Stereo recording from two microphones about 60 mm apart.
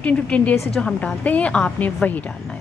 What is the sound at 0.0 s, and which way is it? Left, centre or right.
Speech, left.